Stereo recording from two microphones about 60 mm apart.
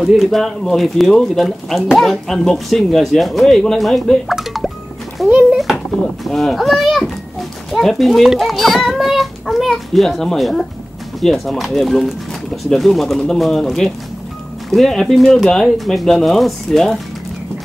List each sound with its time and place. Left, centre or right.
0.0 s speech: centre
5.3 s a sound: centre
6.2 s speech: centre